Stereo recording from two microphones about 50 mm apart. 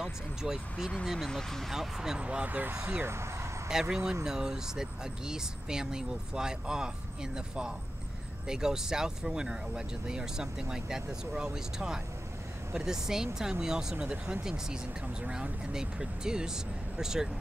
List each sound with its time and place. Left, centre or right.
0.0 s speech: centre
1.3 s speech: centre
1.7 s speech: centre
2.1 s speech: right
3.0 s speech: right
3.9 s speech: centre